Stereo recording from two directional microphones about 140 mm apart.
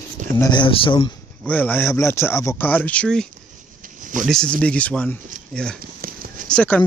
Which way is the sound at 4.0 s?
70° right (ahead or behind).